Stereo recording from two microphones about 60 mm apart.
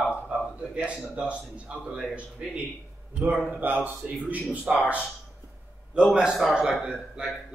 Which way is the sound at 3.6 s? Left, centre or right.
Right.